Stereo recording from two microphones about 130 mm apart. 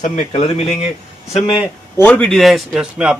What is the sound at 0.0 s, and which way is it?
Speech, 70° left (ahead or behind).